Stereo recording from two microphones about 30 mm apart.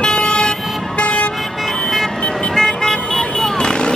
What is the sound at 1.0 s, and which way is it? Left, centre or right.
Vehicle, left.